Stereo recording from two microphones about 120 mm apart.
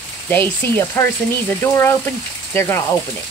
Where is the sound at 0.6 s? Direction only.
20° left (ahead or behind).